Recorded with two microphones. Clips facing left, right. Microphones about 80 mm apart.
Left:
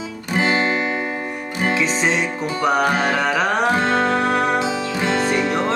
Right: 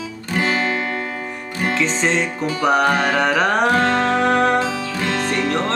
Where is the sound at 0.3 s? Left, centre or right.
Left.